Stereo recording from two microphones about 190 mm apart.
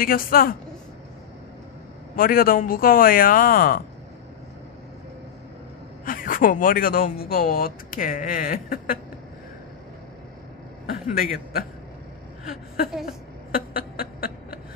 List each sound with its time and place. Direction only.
0.0 s speech: 50° left (ahead or behind)
2.1 s speech: 50° left (ahead or behind)
6.0 s speech: 45° left (ahead or behind)
10.9 s a man's voice: 50° left (ahead or behind)
13.5 s a sound: 50° left (ahead or behind)